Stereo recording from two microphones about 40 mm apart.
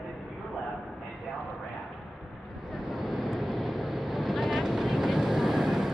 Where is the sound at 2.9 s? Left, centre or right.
Centre.